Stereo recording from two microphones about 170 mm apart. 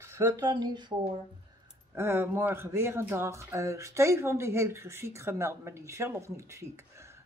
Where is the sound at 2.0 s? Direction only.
15° right (ahead or behind).